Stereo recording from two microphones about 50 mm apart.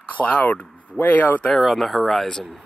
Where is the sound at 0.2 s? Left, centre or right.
Left.